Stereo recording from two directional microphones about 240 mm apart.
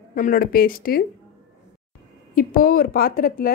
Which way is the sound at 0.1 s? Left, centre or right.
Left.